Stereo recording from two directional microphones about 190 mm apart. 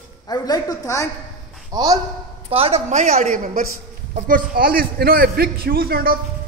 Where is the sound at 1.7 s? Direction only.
20° right (ahead or behind).